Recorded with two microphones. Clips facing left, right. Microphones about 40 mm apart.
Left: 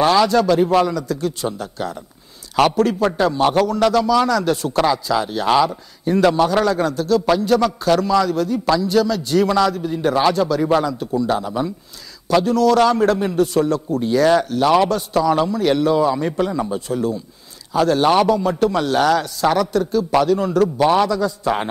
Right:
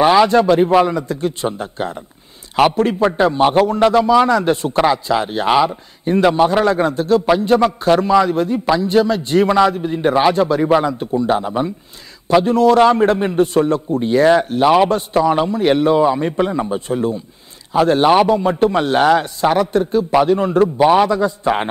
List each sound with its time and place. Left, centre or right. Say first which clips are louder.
0.0 s a man's voice: right 3 dB; right
3.0 s a man's voice: right 3 dB; centre